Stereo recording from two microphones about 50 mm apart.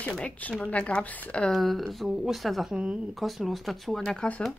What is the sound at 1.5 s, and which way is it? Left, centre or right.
Speech, centre.